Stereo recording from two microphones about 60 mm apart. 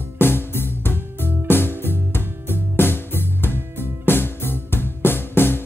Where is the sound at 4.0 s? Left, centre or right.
Left.